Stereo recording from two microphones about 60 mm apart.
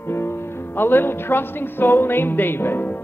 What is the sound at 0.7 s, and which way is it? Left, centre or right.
Speech, left.